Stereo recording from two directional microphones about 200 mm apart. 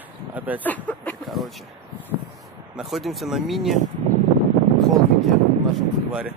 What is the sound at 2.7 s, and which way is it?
Speech, centre (ahead or behind).